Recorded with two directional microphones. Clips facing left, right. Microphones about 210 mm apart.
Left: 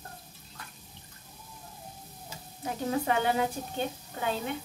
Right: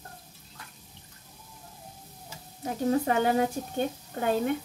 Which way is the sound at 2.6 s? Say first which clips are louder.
Right 4 dB; 40° right (ahead or behind).